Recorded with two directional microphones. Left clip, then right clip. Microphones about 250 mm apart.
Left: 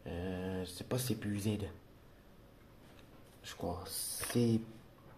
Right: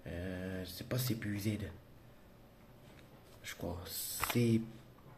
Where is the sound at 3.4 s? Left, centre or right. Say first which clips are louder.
Left 2 dB; centre.